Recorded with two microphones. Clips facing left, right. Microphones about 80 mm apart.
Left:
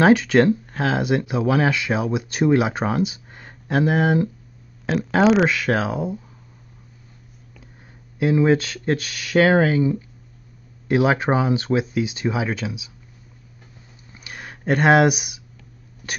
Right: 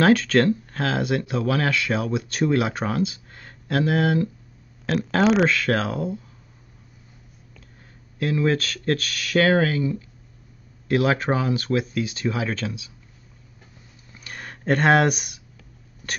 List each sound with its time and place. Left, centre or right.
0.0 s speech: centre
4.8 s speech: centre
8.2 s speech: centre
14.1 s a sound: centre